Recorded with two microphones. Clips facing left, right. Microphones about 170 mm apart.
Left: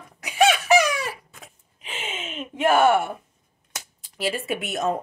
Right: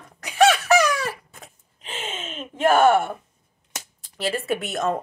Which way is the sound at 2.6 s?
40° right (ahead or behind).